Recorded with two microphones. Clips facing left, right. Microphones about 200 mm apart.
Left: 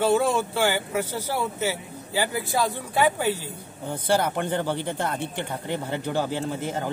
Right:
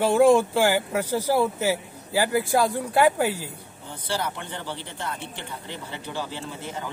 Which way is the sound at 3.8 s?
50° left (ahead or behind).